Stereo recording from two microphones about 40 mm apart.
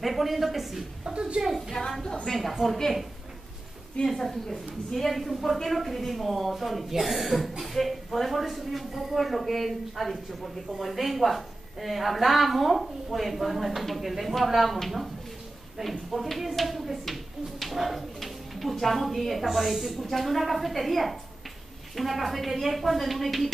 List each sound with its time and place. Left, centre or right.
0.0 s speech: centre
1.1 s a woman's voice: right
1.7 s a woman's voice: centre
4.0 s a woman's voice: left
4.3 s speech: centre